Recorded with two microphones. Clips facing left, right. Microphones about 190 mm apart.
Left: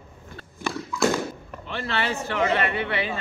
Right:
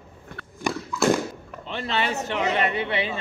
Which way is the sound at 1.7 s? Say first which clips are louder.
Right 1 dB; 20° right (ahead or behind).